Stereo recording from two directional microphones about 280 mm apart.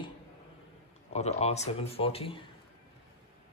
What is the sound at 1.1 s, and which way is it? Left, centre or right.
Speech, left.